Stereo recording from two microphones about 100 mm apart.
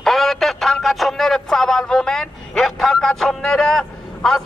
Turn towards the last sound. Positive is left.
turn(degrees=5)  # may be behind; listen again after turning